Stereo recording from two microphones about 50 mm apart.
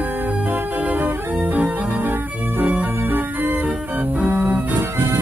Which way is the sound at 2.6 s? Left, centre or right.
Right.